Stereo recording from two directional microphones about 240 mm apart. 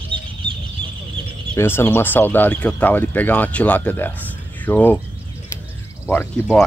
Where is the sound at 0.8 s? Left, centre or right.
Centre.